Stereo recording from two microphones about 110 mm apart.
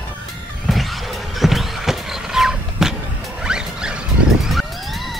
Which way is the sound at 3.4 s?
5° right (ahead or behind).